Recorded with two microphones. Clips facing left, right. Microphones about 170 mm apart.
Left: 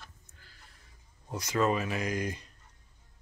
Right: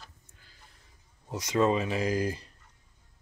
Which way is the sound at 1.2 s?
15° right (ahead or behind).